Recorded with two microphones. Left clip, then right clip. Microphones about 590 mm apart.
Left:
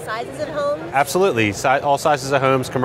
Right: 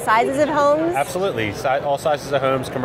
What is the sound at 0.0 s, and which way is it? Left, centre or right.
Speech, right.